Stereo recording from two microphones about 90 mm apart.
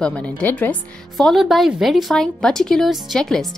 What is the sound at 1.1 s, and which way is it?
A woman's voice, centre (ahead or behind).